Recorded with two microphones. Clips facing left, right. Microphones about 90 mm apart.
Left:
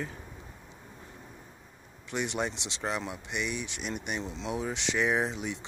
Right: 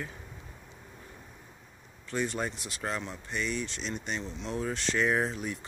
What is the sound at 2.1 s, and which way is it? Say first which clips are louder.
Speech: even; 20° left (ahead or behind).